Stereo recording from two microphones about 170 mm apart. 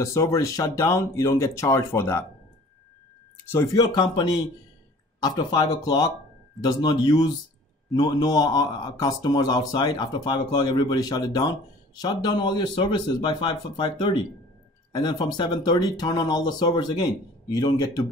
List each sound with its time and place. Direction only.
0.0 s speech: 15° left (ahead or behind)
3.5 s speech: 20° left (ahead or behind)